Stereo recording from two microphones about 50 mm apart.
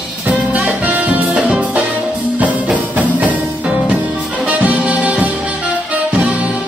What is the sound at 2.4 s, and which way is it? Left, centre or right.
Music, right.